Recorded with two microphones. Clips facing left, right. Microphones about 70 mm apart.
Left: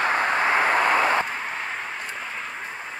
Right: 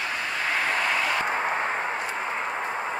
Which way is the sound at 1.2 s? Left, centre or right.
Right.